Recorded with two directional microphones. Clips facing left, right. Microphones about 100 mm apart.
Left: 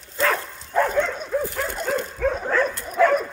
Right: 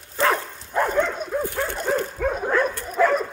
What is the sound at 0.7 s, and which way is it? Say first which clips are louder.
Dog: left 1 dB; 10° right (ahead or behind).